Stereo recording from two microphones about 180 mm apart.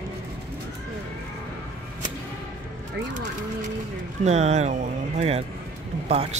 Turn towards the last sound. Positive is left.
turn(degrees=-35)  # may be behind; listen again after turning